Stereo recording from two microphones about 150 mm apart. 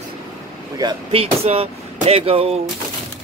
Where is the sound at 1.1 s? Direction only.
40° right (ahead or behind).